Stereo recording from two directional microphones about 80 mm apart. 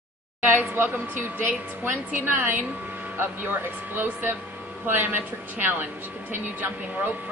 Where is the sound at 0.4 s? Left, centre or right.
Right.